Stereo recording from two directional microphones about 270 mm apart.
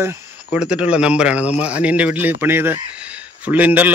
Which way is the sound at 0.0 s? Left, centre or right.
Centre.